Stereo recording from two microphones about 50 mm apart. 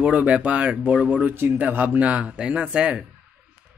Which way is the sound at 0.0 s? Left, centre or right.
Right.